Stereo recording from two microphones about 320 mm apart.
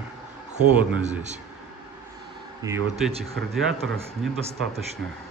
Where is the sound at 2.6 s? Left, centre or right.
Centre.